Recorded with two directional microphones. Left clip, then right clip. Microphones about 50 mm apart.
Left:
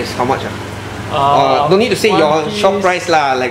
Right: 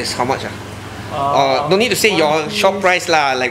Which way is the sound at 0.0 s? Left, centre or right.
Right.